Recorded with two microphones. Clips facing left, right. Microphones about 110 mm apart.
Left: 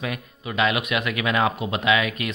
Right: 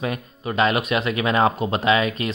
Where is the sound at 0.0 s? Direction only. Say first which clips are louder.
Right 4 dB; 35° right (ahead or behind).